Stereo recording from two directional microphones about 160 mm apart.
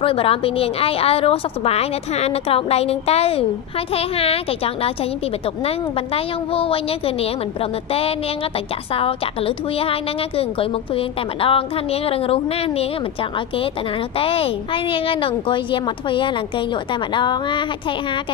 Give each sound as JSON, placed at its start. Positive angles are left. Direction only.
{"t": 0.0, "sound": "speech", "side_deg": 35}
{"t": 8.9, "sound": "speech", "side_deg": 35}
{"t": 14.1, "sound": "speech", "side_deg": 35}